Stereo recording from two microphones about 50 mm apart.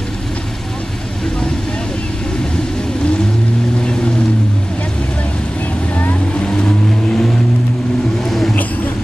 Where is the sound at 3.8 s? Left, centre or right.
Centre.